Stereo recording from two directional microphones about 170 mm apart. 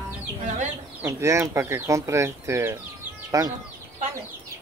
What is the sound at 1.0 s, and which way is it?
Speech, 15° right (ahead or behind).